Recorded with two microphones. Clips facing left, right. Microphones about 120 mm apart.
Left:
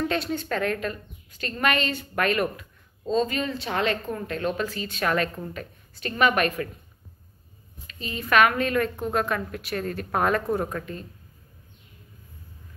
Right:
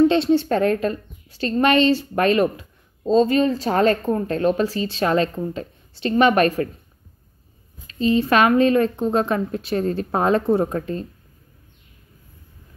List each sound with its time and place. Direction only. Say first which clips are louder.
0.1 s a woman's voice: right 10 dB; 30° right (ahead or behind)
7.8 s a woman's voice: right 16 dB; 30° right (ahead or behind)